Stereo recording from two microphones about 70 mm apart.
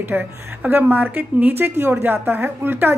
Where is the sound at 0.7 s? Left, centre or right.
Right.